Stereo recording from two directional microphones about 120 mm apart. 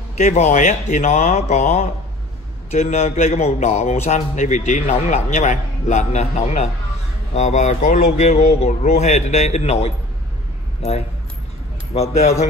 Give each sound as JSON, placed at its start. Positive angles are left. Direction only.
{"t": 0.2, "sound": "a man's voice", "side_deg": 75}